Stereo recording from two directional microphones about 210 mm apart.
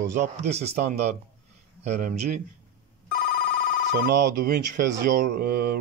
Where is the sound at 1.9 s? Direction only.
40° right (ahead or behind).